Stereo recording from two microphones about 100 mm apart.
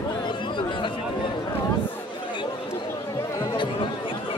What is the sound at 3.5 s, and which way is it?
Chatter, 55° left (ahead or behind).